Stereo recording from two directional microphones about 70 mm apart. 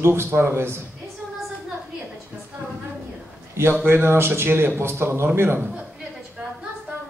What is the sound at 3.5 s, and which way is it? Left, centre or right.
A man's voice, right.